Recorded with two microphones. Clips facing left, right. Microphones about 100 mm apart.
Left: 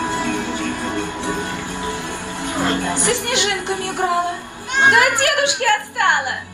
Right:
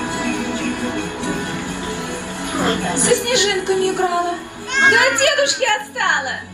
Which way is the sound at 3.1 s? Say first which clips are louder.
Right 6 dB; 20° left (ahead or behind).